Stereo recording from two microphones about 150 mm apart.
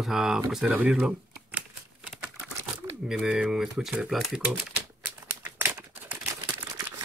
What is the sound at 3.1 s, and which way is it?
Speech, 5° right (ahead or behind).